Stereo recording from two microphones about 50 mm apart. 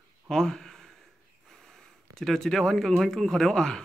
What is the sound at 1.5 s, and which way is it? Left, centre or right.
Speech, centre.